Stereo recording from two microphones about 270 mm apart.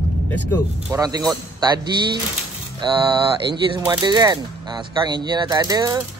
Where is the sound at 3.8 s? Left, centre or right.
Centre.